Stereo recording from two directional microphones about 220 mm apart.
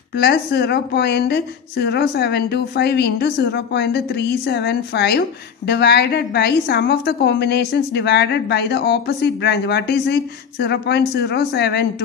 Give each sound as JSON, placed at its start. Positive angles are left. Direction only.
{"t": 0.1, "sound": "a woman's voice", "side_deg": 50}